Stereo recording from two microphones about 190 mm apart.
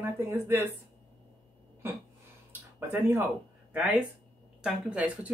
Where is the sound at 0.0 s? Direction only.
10° right (ahead or behind).